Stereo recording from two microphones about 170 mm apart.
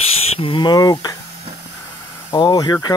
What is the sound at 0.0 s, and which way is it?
Speech, 30° left (ahead or behind).